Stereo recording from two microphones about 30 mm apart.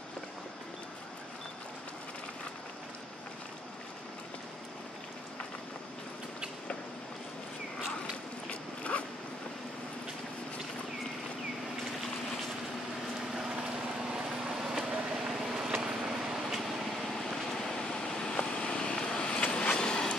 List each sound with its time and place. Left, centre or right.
8.5 s zipper: left
13.2 s a sound: centre
13.6 s a sound: right
15.2 s vehicle: centre
17.1 s vehicle: centre
17.6 s vehicle: left
19.2 s vehicle: left
19.7 s vehicle: left